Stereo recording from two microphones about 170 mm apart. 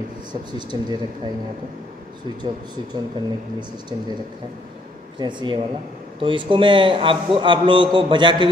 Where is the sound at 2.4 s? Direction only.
25° right (ahead or behind).